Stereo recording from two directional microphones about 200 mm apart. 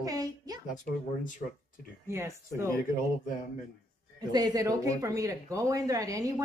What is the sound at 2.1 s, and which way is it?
Speech, 15° right (ahead or behind).